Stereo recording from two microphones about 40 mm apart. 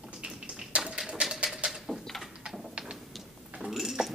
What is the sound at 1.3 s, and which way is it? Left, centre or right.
Bird, right.